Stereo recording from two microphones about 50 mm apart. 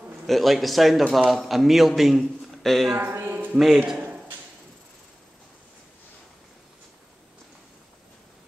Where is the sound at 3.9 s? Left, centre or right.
Right.